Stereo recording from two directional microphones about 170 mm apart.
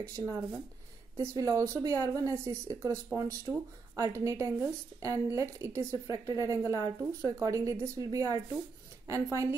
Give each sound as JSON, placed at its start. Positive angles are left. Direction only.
{"t": 0.0, "sound": "a woman's voice", "side_deg": -20}